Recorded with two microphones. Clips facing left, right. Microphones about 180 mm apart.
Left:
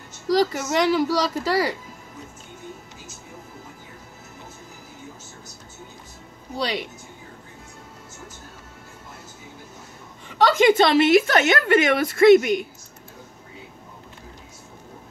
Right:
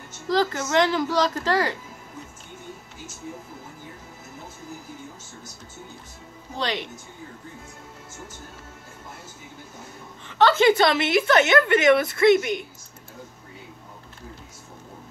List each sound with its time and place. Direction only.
0.3 s a child's voice: 10° left (ahead or behind)
6.5 s a child's voice: 10° left (ahead or behind)
10.2 s a woman's voice: 10° left (ahead or behind)
11.0 s a woman's voice: 40° left (ahead or behind)